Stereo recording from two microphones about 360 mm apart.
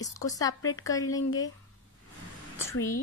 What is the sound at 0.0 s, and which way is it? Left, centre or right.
Speech, centre.